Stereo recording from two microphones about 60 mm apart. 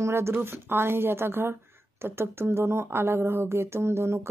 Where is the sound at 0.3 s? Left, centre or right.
Right.